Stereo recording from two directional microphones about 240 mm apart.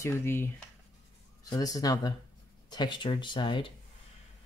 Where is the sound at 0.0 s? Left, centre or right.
Centre.